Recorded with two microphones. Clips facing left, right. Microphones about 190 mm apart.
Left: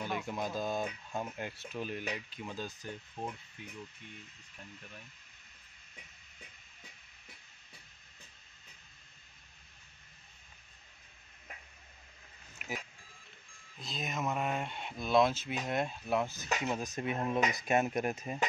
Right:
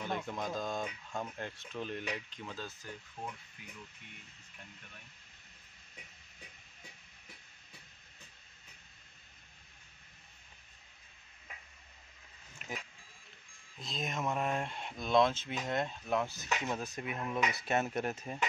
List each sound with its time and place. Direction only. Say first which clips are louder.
0.0 s speech: left 1 dB; 5° left (ahead or behind)
2.4 s speech: left 3 dB; 15° left (ahead or behind)
13.7 s speech: even; centre (ahead or behind)
16.9 s speech: left 4 dB; 30° left (ahead or behind)
17.6 s speech: left 3 dB; 15° left (ahead or behind)